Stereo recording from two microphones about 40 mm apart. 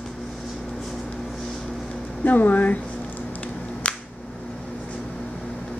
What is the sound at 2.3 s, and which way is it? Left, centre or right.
Speech, left.